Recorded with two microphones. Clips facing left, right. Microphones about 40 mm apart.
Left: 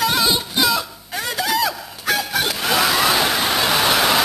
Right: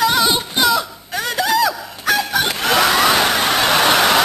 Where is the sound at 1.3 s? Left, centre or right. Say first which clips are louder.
Right 4 dB; centre.